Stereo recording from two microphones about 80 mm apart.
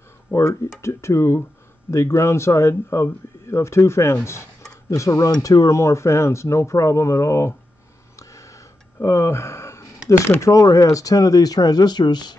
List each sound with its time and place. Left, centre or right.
0.3 s speech: left
8.2 s a sound: left
9.0 s speech: left